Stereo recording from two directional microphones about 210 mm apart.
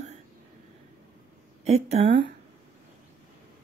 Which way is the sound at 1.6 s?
30° right (ahead or behind).